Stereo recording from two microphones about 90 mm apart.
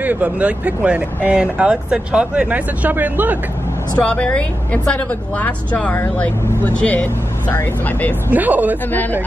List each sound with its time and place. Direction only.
0.0 s speech: 15° right (ahead or behind)
4.1 s speech: 10° left (ahead or behind)
8.3 s speech: 20° right (ahead or behind)